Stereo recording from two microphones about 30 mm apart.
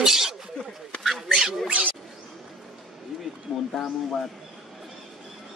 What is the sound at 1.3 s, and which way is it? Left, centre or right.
Duck, centre.